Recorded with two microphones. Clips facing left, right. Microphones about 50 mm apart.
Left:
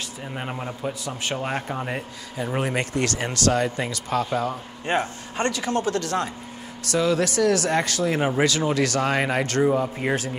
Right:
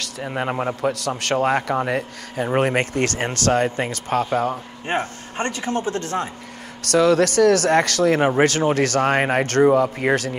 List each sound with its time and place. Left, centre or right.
0.2 s speech: right
1.3 s speech: right
4.8 s speech: right
6.8 s speech: right